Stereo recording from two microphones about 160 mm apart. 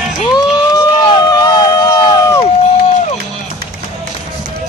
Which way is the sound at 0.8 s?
25° left (ahead or behind).